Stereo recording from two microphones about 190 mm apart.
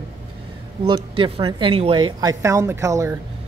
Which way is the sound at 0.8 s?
25° right (ahead or behind).